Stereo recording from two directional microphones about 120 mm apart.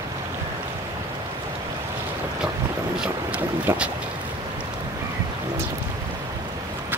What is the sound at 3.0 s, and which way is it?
Boat, 10° right (ahead or behind).